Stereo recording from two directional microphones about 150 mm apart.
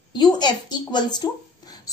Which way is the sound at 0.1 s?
30° left (ahead or behind).